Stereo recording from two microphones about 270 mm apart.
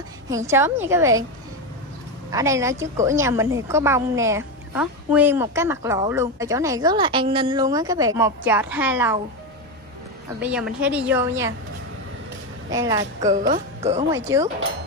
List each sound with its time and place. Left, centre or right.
0.3 s a woman's voice: centre
2.3 s a woman's voice: centre
10.4 s a woman's voice: centre
12.7 s a woman's voice: centre
13.5 s speech: right
14.1 s a woman's voice: centre